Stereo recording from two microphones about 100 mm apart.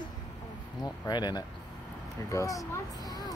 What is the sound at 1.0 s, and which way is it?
Speech, 45° left (ahead or behind).